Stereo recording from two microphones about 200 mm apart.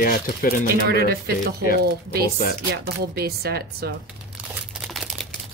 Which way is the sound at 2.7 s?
50° right (ahead or behind).